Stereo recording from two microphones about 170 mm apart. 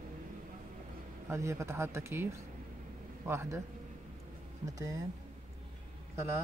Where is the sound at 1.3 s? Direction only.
15° right (ahead or behind).